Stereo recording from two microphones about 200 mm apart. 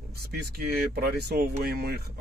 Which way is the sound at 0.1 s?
50° right (ahead or behind).